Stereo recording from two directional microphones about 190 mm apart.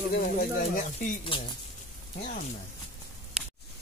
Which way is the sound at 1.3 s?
25° left (ahead or behind).